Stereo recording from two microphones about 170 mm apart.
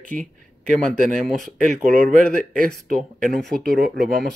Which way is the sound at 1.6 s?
50° right (ahead or behind).